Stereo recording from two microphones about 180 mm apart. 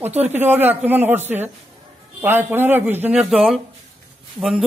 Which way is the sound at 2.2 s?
10° right (ahead or behind).